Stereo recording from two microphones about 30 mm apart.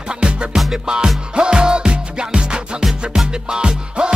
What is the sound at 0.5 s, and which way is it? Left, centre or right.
Music, centre.